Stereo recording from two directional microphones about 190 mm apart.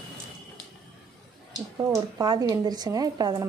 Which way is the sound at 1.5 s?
15° right (ahead or behind).